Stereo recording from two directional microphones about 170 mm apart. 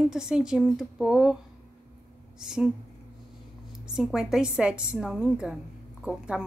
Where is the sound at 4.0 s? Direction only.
5° right (ahead or behind).